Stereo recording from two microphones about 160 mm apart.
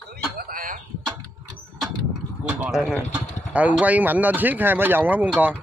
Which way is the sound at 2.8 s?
10° left (ahead or behind).